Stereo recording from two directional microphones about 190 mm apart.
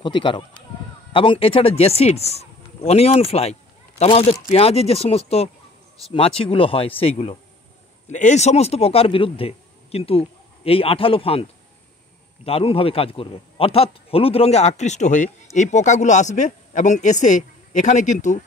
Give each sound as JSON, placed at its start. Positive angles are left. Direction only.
{"t": 0.0, "sound": "speech", "side_deg": 25}
{"t": 12.4, "sound": "speech", "side_deg": 30}